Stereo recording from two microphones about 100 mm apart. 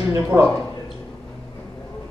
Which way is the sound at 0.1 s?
25° right (ahead or behind).